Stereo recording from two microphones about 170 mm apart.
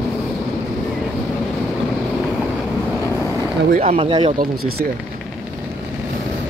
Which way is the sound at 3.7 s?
35° right (ahead or behind).